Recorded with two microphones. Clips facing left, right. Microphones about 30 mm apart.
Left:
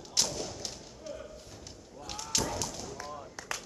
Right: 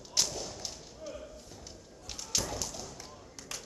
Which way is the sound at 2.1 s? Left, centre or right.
Centre.